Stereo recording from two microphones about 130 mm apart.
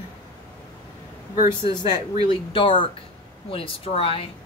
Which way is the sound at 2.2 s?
40° left (ahead or behind).